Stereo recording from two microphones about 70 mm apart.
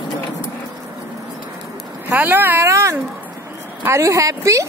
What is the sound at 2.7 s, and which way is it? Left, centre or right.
A woman's voice, right.